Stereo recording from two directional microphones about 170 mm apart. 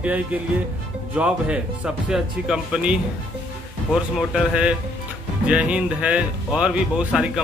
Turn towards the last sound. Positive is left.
turn(degrees=-5)  # may be behind; listen again after turning